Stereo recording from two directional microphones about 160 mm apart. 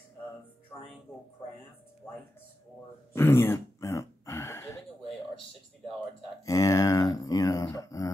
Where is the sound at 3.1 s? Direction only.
15° left (ahead or behind).